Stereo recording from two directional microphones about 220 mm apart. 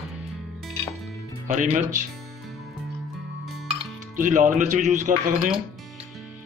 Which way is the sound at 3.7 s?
35° right (ahead or behind).